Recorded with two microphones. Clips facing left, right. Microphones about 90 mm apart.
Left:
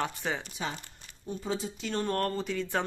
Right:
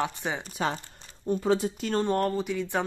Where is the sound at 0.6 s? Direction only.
60° right (ahead or behind).